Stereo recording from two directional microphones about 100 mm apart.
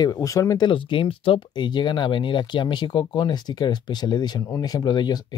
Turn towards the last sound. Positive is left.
turn(degrees=45)  # may be behind; listen again after turning